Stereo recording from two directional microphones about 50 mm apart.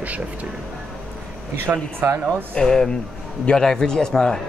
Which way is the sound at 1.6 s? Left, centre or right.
Right.